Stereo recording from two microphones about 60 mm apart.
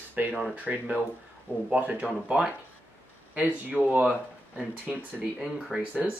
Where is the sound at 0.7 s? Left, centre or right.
Centre.